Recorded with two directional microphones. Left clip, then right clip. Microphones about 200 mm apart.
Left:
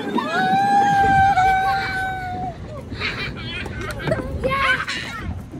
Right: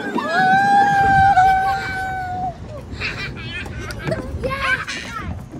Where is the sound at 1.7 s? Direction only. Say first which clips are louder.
Left 1 dB; 15° right (ahead or behind).